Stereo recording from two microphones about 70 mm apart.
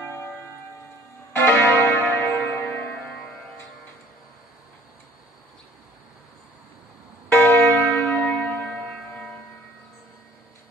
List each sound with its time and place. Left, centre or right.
0.0 s church bell: left
1.3 s church bell: left
3.0 s music: centre
7.2 s church bell: left
8.7 s music: centre